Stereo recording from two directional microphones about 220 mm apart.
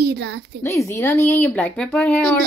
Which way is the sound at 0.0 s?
50° right (ahead or behind).